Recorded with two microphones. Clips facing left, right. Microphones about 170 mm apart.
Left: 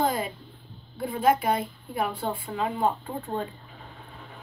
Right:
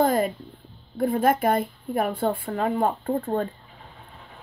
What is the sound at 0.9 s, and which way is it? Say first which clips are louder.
A woman's voice: right 2 dB; 55° right (ahead or behind).